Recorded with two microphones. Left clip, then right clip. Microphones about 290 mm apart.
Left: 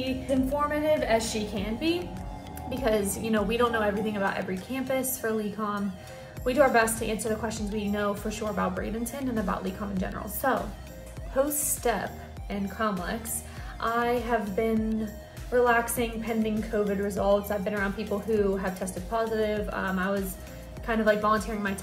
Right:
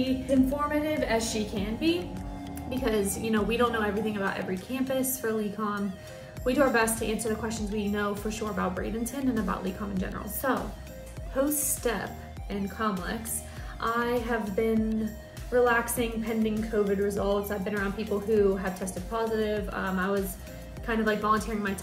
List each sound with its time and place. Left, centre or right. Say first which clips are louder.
0.7 s a woman's voice: left 3 dB; centre